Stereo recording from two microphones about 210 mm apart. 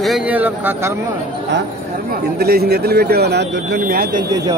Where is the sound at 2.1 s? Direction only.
50° right (ahead or behind).